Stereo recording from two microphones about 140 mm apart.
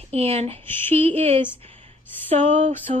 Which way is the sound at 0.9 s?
45° right (ahead or behind).